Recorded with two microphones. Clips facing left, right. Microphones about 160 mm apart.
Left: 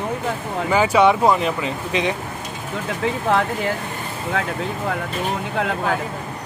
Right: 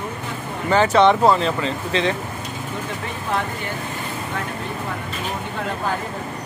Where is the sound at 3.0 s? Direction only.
90° left.